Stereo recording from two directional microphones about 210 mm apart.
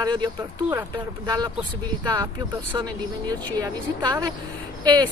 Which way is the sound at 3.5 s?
20° right (ahead or behind).